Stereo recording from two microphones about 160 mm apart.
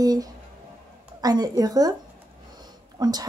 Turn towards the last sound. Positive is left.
turn(degrees=-25)  # may be behind; listen again after turning